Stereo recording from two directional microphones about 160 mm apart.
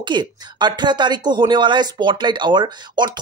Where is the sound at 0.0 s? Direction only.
30° right (ahead or behind).